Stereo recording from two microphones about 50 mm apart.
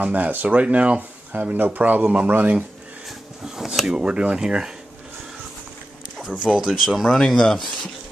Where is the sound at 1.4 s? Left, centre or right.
Right.